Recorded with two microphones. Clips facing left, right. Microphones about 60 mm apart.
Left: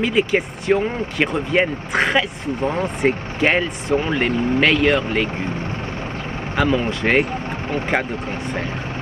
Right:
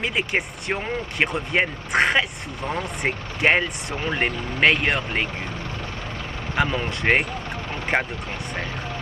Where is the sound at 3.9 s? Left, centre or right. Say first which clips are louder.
Left 14 dB; left.